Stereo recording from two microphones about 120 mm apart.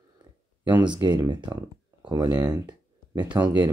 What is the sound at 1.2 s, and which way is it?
Speech, 40° right (ahead or behind).